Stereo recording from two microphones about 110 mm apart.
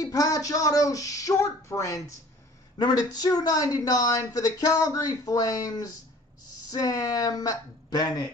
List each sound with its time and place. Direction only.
0.0 s a woman's voice: 35° left (ahead or behind)
2.8 s a woman's voice: 40° left (ahead or behind)